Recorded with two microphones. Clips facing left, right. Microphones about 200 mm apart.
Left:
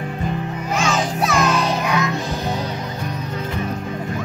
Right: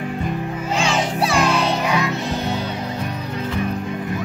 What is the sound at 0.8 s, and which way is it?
Music, 30° right (ahead or behind).